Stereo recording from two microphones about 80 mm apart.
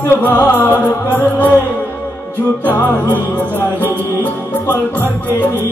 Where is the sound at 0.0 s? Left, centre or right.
Left.